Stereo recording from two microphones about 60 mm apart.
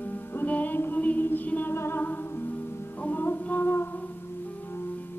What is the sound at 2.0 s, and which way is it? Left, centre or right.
Music, left.